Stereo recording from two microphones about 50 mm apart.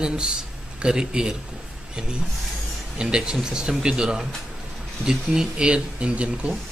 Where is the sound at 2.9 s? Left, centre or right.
Centre.